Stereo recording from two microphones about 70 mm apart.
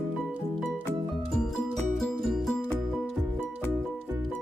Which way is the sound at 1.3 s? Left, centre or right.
Centre.